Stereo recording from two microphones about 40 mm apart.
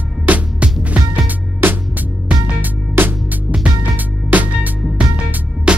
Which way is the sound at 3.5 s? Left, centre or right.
Centre.